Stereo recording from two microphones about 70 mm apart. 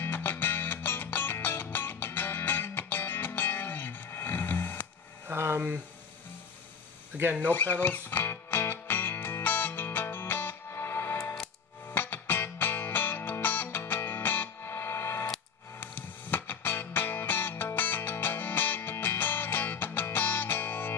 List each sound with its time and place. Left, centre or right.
0.0 s music: left
5.3 s speech: right
7.5 s music: left